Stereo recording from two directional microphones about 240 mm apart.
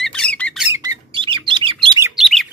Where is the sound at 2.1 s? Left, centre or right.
Centre.